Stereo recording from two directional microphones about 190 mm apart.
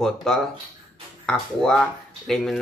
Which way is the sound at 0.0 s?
5° left (ahead or behind).